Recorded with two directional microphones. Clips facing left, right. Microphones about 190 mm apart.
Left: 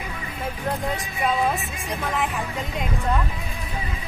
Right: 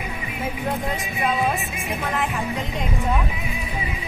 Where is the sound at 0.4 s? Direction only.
Centre (ahead or behind).